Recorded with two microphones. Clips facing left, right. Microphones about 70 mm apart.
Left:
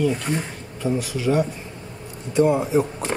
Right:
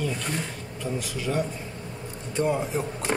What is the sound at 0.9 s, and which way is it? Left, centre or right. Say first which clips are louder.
Speech: left 7 dB; centre.